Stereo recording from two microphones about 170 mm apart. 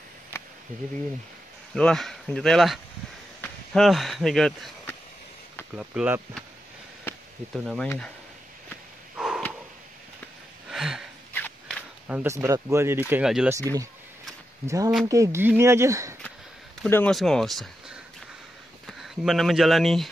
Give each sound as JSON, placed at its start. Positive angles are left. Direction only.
{"t": 0.3, "sound": "a sound", "side_deg": 15}
{"t": 1.8, "sound": "speech", "side_deg": 5}
{"t": 5.8, "sound": "speech", "side_deg": -10}
{"t": 7.1, "sound": "a sound", "side_deg": 10}
{"t": 7.5, "sound": "speech", "side_deg": 0}
{"t": 9.1, "sound": "a sound", "side_deg": -5}
{"t": 10.7, "sound": "a sound", "side_deg": 0}
{"t": 11.3, "sound": "walk", "side_deg": 5}
{"t": 12.1, "sound": "speech", "side_deg": -10}
{"t": 13.5, "sound": "speech", "side_deg": -20}
{"t": 15.0, "sound": "speech", "side_deg": -20}
{"t": 16.8, "sound": "speech", "side_deg": 5}